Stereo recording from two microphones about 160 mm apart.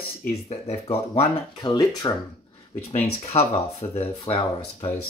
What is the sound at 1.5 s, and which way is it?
Speech, 25° left (ahead or behind).